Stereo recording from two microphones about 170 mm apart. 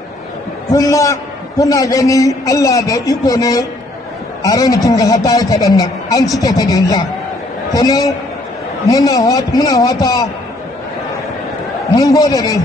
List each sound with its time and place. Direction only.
0.7 s a man's voice: 20° left (ahead or behind)
11.9 s a man's voice: 20° left (ahead or behind)